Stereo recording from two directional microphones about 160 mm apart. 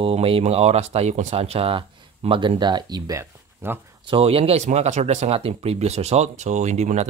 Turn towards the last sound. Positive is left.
turn(degrees=-45)  # may be behind; listen again after turning